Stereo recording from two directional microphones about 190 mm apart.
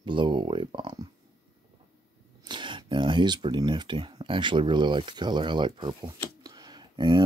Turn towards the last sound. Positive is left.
turn(degrees=-25)  # may be behind; listen again after turning